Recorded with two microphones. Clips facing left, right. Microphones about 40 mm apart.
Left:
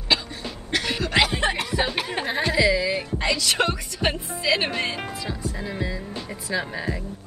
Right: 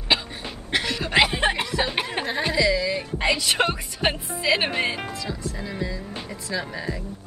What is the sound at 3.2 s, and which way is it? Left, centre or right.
Speech, centre.